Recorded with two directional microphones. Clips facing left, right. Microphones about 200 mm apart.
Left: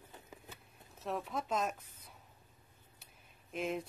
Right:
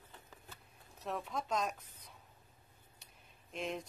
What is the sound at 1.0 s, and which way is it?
Speech, centre (ahead or behind).